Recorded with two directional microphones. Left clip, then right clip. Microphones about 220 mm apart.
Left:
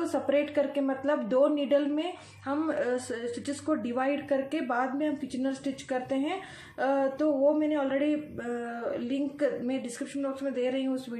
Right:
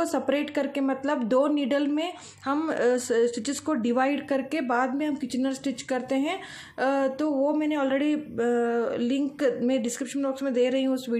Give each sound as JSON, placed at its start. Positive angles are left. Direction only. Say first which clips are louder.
{"t": 0.0, "sound": "speech", "louder": "right 1 dB", "side_deg": -45}